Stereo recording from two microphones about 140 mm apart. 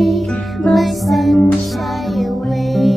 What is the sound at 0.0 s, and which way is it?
Music, centre (ahead or behind).